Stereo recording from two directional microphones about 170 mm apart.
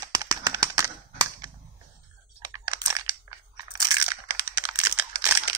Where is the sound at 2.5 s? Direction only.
20° right (ahead or behind).